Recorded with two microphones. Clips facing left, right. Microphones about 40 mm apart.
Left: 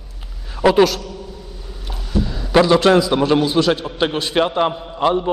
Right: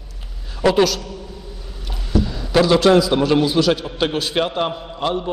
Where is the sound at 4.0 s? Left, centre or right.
Left.